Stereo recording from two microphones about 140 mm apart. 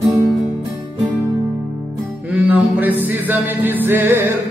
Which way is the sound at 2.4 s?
10° right (ahead or behind).